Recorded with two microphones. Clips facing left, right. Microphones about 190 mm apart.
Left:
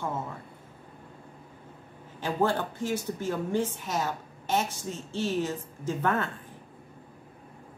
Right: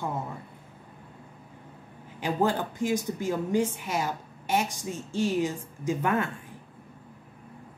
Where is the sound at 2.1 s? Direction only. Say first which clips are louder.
Right 1 dB; 15° right (ahead or behind).